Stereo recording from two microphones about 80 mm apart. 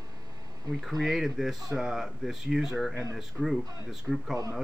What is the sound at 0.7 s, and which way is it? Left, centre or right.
Speech, centre.